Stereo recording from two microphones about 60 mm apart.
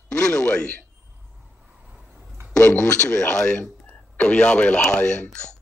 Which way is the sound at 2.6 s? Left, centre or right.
Centre.